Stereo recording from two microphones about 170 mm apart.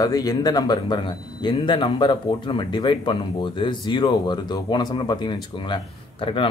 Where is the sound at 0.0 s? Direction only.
20° left (ahead or behind).